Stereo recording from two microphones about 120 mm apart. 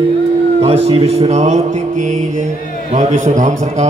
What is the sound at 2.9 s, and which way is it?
Speech, 80° right.